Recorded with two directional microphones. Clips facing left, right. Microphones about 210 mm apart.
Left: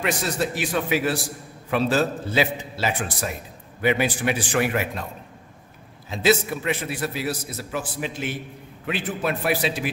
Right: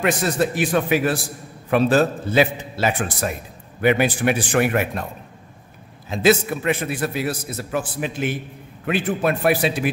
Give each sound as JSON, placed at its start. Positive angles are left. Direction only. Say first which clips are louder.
{"t": 0.0, "sound": "a man's voice", "louder": "right 5 dB", "side_deg": -50}
{"t": 6.0, "sound": "a man's voice", "louder": "right 3 dB", "side_deg": -50}